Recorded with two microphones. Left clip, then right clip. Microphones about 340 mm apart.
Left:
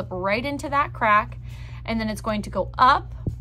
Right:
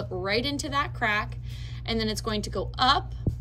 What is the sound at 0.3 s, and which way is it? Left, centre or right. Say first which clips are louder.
A woman's voice: left 3 dB; centre.